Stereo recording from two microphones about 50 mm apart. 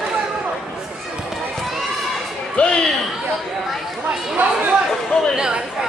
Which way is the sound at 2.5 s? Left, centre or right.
Centre.